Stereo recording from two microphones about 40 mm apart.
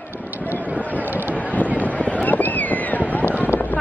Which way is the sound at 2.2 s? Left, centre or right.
Left.